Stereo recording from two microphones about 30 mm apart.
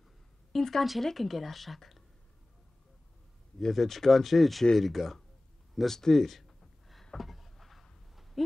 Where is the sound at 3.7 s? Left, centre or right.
Centre.